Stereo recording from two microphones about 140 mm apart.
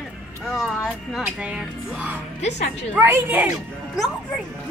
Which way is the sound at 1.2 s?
5° right (ahead or behind).